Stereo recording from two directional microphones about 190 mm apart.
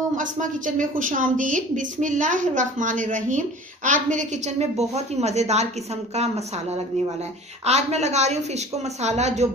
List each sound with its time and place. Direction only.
0.1 s a woman's voice: 40° right (ahead or behind)
7.6 s a woman's voice: 35° right (ahead or behind)